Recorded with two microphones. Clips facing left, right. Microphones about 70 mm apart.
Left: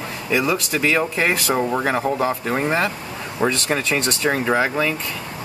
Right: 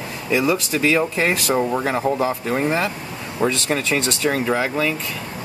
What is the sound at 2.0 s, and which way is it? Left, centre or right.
Speech, centre.